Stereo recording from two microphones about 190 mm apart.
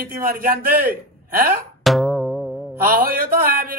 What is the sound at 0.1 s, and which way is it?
Speech, 50° right (ahead or behind).